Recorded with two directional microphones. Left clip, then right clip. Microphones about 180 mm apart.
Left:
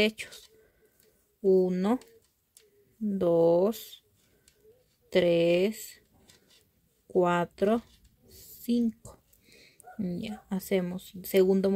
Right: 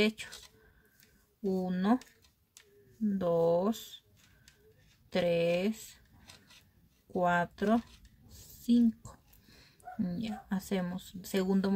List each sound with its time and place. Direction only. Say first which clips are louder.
0.0 s speech: left 4 dB; 30° left (ahead or behind)
1.4 s speech: left 10 dB; 30° left (ahead or behind)
3.2 s speech: left 6 dB; 30° left (ahead or behind)
5.1 s speech: left 6 dB; 30° left (ahead or behind)
7.1 s speech: left 4 dB; 30° left (ahead or behind)
8.3 s a sound: even; 30° left (ahead or behind)
9.6 s speech: even; 25° left (ahead or behind)